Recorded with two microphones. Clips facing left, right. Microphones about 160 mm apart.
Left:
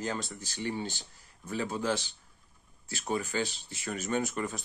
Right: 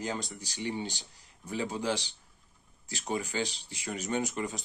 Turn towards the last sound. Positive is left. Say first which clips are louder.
# left 1 dB
turn(degrees=-20)  # may be behind; listen again after turning